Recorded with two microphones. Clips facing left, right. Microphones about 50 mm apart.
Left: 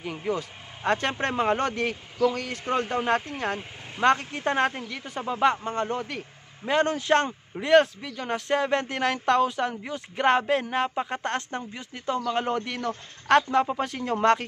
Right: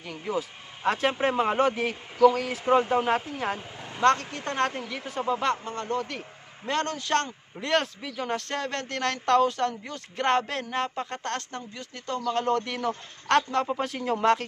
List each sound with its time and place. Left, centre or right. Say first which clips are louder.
0.0 s speech: left 4 dB; centre
0.3 s speech: even; centre
3.5 s speech: left 1 dB; centre
4.7 s speech: right 2 dB; centre
5.7 s a man's voice: left 2 dB; left
6.0 s speech: left 1 dB; centre
7.5 s speech: left 7 dB; centre
12.6 s speech: right 1 dB; centre